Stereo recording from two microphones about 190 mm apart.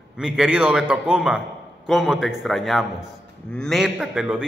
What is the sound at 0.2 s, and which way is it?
A man's voice, 5° right (ahead or behind).